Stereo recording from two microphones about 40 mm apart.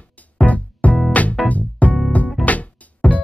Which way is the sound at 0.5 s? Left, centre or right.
Left.